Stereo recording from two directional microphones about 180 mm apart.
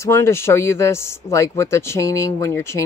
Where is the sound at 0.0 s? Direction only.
15° left (ahead or behind).